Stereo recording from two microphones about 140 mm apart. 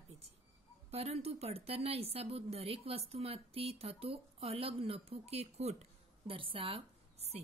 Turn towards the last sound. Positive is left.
turn(degrees=-50)  # may be behind; listen again after turning